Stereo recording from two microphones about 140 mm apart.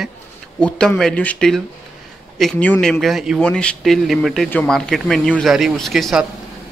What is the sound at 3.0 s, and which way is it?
Speech, 5° right (ahead or behind).